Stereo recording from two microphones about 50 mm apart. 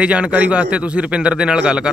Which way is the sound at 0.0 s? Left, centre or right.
Right.